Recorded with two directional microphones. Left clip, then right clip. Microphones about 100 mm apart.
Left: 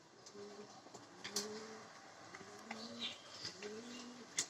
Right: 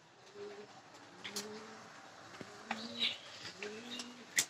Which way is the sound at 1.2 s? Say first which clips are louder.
Even; 25° left (ahead or behind).